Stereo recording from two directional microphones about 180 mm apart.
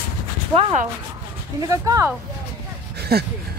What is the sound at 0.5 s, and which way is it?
Speech, 40° right (ahead or behind).